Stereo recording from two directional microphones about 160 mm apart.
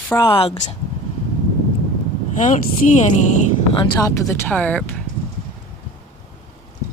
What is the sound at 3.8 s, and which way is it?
Speech, 20° left (ahead or behind).